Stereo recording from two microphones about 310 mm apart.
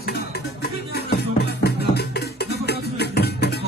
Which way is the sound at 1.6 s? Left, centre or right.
Left.